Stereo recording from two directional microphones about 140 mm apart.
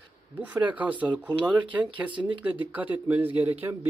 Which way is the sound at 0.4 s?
10° right (ahead or behind).